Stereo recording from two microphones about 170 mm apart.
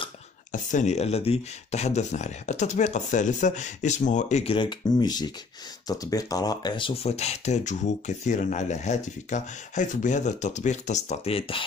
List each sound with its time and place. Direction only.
0.5 s speech: 45° left (ahead or behind)
4.6 s speech: 25° left (ahead or behind)
7.0 s speech: 40° left (ahead or behind)